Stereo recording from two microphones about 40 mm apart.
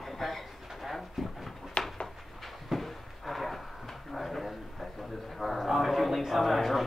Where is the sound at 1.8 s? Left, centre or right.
Left.